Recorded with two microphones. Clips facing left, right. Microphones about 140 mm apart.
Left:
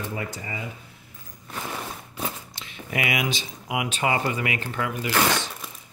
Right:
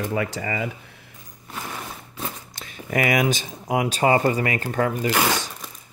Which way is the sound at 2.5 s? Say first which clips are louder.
Right 5 dB; 45° right (ahead or behind).